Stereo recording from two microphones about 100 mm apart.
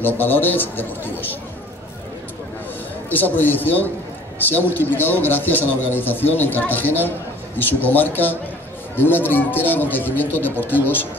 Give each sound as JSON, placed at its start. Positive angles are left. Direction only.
{"t": 0.0, "sound": "a man's voice", "side_deg": 20}
{"t": 3.1, "sound": "a man's voice", "side_deg": 20}